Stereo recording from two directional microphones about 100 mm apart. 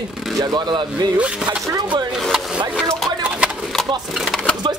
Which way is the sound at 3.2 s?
15° right (ahead or behind).